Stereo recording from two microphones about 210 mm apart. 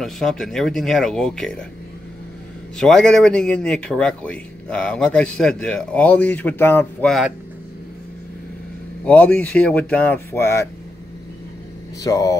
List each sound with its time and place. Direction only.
0.0 s speech: centre (ahead or behind)
2.8 s speech: 5° left (ahead or behind)
9.0 s speech: 5° left (ahead or behind)
12.0 s speech: 15° left (ahead or behind)